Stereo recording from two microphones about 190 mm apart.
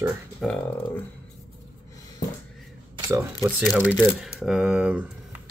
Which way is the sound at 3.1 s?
10° right (ahead or behind).